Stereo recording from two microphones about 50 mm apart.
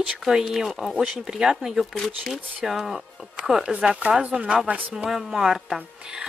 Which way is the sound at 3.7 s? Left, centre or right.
Right.